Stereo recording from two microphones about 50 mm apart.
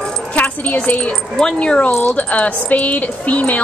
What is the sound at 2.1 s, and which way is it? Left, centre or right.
A woman's voice, left.